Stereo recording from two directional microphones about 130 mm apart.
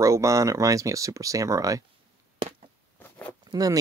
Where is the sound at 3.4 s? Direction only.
30° right (ahead or behind).